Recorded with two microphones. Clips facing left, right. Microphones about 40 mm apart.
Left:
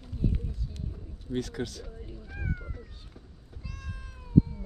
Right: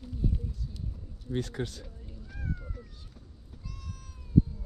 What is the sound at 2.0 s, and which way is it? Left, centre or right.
Cat, left.